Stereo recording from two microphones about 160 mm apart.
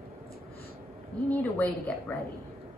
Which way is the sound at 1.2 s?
10° left (ahead or behind).